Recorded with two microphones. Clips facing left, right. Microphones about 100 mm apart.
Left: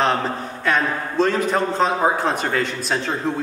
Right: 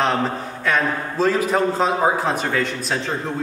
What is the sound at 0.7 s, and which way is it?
A man's voice, 5° right (ahead or behind).